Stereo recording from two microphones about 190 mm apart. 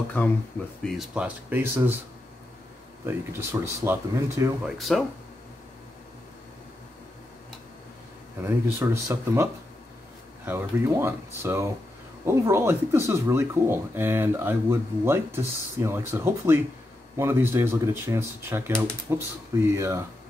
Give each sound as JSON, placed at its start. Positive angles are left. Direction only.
{"t": 0.2, "sound": "speech", "side_deg": 10}
{"t": 0.8, "sound": "speech", "side_deg": -5}
{"t": 3.3, "sound": "speech", "side_deg": -10}
{"t": 4.6, "sound": "speech", "side_deg": 0}
{"t": 8.4, "sound": "speech", "side_deg": -15}